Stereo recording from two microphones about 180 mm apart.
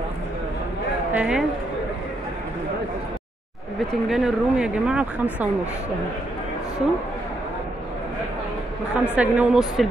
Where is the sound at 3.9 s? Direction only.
Centre (ahead or behind).